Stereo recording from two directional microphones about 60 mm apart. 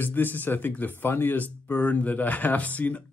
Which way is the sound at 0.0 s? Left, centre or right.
Left.